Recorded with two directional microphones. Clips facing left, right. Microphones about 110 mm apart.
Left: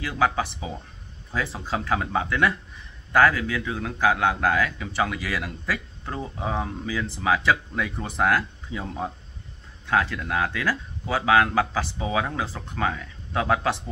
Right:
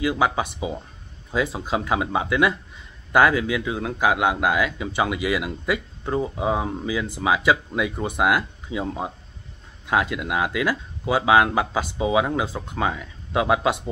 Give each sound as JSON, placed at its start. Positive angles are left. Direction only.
{"t": 0.0, "sound": "speech", "side_deg": -15}